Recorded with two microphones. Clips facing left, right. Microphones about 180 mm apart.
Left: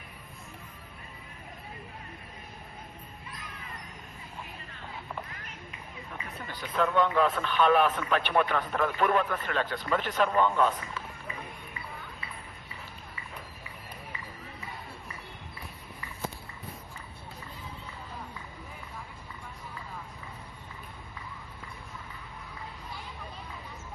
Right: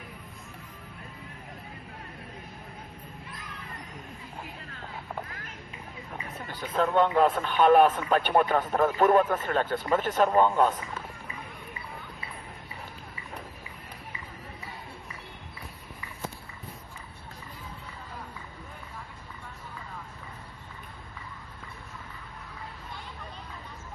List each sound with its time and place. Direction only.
6.6 s speech: 45° right (ahead or behind)